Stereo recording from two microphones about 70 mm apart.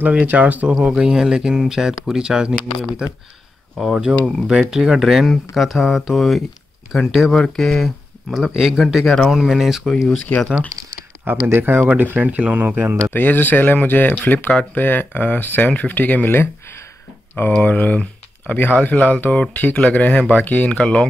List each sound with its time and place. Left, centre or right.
0.0 s speech: right; by 9.9 s centre
10.3 s speech: left
11.2 s speech: right
13.1 s speech: left
17.6 s speech: left